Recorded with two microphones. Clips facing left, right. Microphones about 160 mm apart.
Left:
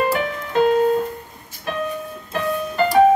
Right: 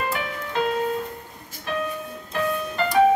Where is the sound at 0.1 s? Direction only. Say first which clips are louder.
Left 6 dB; 45° left (ahead or behind).